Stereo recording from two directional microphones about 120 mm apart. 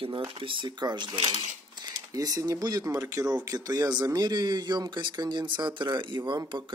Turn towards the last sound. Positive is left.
turn(degrees=-40)  # may be behind; listen again after turning